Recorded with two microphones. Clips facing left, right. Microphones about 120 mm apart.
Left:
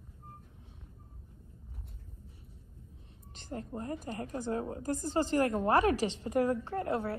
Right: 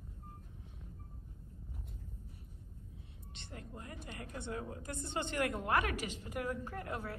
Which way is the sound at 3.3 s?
35° left (ahead or behind).